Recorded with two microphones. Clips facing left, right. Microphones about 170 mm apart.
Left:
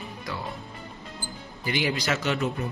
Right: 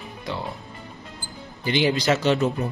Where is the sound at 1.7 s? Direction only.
25° right (ahead or behind).